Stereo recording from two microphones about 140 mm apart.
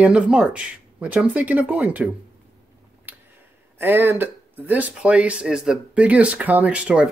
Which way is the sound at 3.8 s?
15° right (ahead or behind).